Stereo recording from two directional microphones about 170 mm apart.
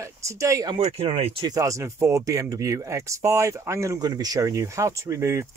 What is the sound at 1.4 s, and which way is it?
Speech, 20° right (ahead or behind).